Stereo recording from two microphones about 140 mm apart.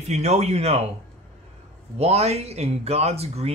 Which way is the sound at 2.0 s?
50° right (ahead or behind).